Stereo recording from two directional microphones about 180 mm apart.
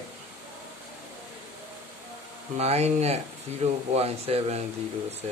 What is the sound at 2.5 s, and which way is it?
Speech, 35° right (ahead or behind).